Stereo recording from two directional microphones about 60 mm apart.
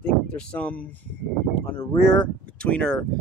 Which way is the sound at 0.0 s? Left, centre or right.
Left.